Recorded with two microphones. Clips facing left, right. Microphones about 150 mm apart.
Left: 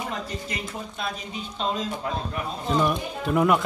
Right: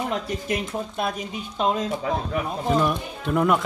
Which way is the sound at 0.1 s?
60° right (ahead or behind).